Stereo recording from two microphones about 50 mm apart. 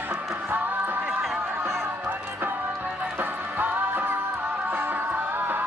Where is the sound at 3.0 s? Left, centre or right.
Right.